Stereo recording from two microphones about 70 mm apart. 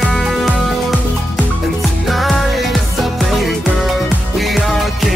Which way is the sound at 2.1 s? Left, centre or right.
Centre.